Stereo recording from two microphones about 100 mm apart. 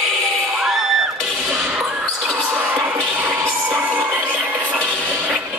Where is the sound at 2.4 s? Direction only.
15° right (ahead or behind).